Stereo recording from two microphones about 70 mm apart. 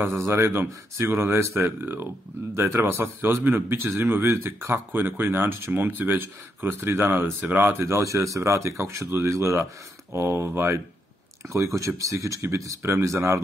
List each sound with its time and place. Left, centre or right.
0.3 s speech: right
2.5 s speech: right
7.8 s speech: right
9.0 s speech: right
9.3 s speech: right
11.5 s speech: right